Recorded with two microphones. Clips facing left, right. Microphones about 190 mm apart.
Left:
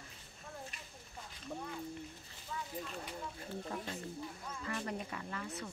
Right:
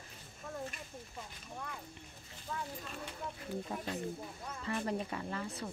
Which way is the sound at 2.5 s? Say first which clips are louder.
Right 3 dB; 50° right (ahead or behind).